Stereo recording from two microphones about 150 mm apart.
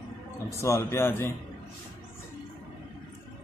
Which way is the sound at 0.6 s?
20° left (ahead or behind).